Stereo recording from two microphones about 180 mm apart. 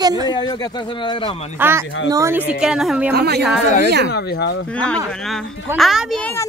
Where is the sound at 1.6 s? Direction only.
15° right (ahead or behind).